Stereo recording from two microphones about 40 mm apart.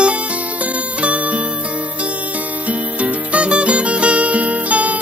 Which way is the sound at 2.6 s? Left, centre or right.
Right.